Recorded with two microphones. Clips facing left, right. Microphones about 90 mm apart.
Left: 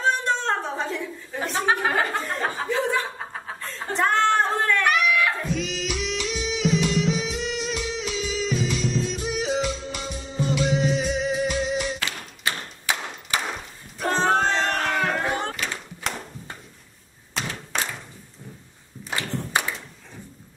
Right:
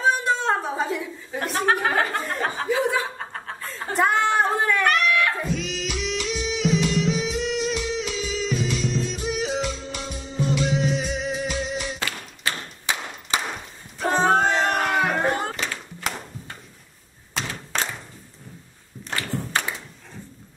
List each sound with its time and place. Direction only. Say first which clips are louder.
0.0 s chuckle: right 2 dB; 10° right (ahead or behind)
3.2 s chuckle: even; 5° left (ahead or behind)
4.8 s music: even; 5° left (ahead or behind)
12.4 s thump: even; 20° left (ahead or behind)
13.3 s a sound: right 1 dB; 20° right (ahead or behind)
14.1 s music: right 2 dB; 10° right (ahead or behind)
15.2 s a sound: right 2 dB; centre (ahead or behind)
17.4 s thump: even; centre (ahead or behind)
17.7 s a sound: right 1 dB; centre (ahead or behind)